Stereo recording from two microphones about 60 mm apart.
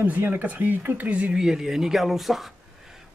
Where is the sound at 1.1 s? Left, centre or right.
Right.